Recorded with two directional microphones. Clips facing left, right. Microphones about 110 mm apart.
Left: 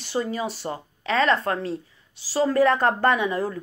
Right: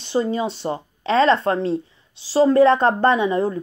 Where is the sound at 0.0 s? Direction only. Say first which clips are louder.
Right 5 dB; 25° right (ahead or behind).